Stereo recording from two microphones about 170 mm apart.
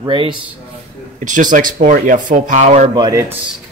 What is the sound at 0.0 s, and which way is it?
Speech, 30° right (ahead or behind).